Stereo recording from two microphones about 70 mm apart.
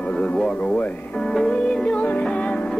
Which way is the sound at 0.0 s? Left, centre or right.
Centre.